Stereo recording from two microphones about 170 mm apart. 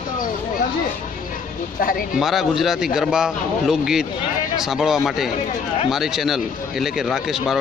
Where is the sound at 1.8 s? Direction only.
55° left (ahead or behind).